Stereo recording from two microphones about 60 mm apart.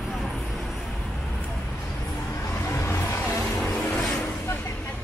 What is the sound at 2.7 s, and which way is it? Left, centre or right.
Vehicle, left.